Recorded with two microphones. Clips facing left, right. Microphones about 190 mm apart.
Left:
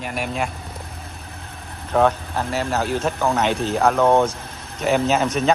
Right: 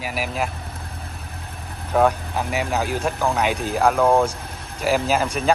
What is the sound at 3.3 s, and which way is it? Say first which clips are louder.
Speech: left 2 dB; 10° right (ahead or behind).